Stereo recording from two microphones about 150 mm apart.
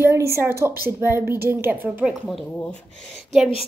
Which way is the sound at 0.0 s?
20° right (ahead or behind).